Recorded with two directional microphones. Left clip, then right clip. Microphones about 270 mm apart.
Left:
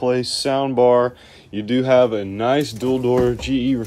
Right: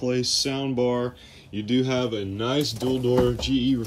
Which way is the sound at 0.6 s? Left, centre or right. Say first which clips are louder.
Left 14 dB; left.